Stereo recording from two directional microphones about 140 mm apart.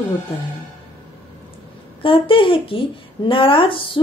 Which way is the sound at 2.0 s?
40° left (ahead or behind).